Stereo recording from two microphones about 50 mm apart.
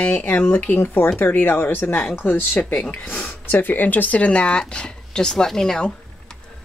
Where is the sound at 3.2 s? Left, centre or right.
Left; by 5.9 s centre.